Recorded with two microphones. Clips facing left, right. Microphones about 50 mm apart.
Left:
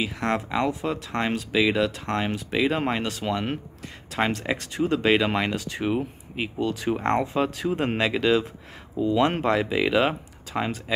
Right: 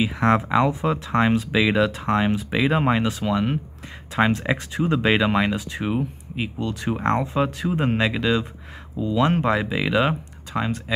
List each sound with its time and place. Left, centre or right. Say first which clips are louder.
0.1 s speech: right 6 dB; right
0.5 s speech: right 5 dB; centre
1.2 s speech: right 2 dB; centre
4.1 s speech: right 4 dB; centre
6.7 s speech: right 2 dB; centre
8.9 s speech: left 1 dB; centre
9.2 s speech: right 4 dB; centre